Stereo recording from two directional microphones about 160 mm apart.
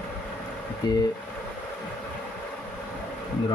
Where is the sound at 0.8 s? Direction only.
25° left (ahead or behind).